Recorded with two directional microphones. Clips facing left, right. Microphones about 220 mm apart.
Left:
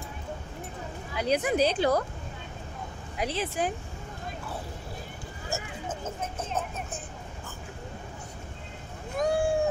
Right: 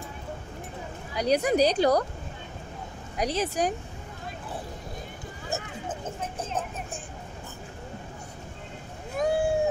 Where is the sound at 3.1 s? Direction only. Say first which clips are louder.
Right 3 dB; 40° right (ahead or behind).